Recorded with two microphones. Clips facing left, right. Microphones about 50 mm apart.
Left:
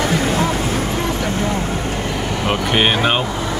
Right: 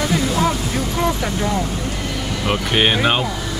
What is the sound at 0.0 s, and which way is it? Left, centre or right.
Vehicle, left.